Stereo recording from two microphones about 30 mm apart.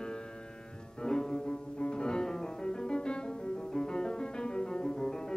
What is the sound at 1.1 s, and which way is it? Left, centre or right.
Bowed string instrument, left.